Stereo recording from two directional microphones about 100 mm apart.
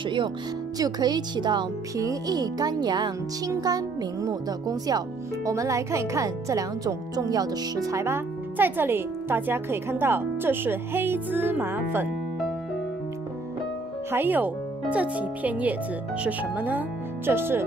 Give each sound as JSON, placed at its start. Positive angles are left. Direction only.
{"t": 0.0, "sound": "speech", "side_deg": -55}
{"t": 0.7, "sound": "speech", "side_deg": -40}
{"t": 2.0, "sound": "speech", "side_deg": -35}
{"t": 14.1, "sound": "speech", "side_deg": -20}